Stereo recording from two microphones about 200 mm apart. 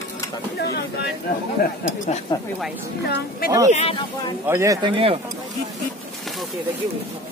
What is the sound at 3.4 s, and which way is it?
Speech, 50° left (ahead or behind).